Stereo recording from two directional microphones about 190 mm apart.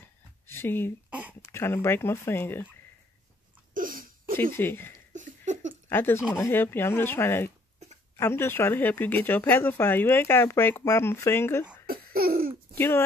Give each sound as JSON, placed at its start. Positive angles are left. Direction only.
{"t": 0.0, "sound": "a sound", "side_deg": 10}
{"t": 1.5, "sound": "speech", "side_deg": 15}
{"t": 3.7, "sound": "crying", "side_deg": -45}
{"t": 4.6, "sound": "speech", "side_deg": 10}
{"t": 5.1, "sound": "a sound", "side_deg": -40}
{"t": 5.9, "sound": "speech", "side_deg": 10}
{"t": 11.8, "sound": "laughter", "side_deg": -50}
{"t": 12.7, "sound": "speech", "side_deg": 10}